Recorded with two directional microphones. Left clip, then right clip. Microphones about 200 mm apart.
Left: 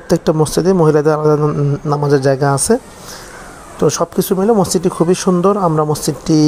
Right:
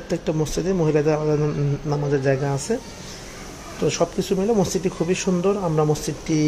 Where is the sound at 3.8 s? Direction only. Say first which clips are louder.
Left 7 dB; 30° left (ahead or behind).